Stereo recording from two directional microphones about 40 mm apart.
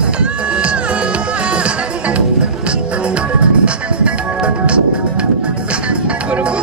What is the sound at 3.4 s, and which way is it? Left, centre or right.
Music, right.